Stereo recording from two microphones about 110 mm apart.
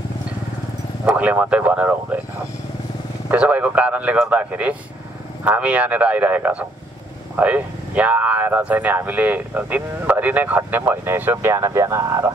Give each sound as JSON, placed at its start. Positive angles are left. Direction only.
{"t": 1.0, "sound": "speech", "side_deg": -15}